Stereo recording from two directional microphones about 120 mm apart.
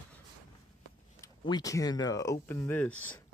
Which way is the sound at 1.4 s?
35° left (ahead or behind).